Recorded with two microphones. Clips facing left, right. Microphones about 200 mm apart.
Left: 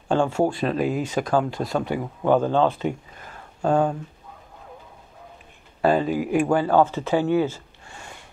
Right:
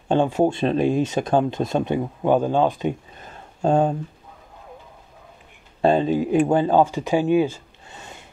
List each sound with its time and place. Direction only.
0.1 s speech: 20° right (ahead or behind)
5.8 s speech: 25° right (ahead or behind)